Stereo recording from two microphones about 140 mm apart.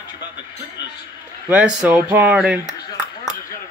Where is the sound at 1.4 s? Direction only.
10° right (ahead or behind).